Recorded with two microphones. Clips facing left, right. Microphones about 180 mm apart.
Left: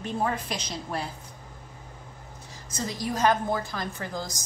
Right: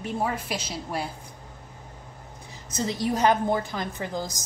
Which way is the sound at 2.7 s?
20° right (ahead or behind).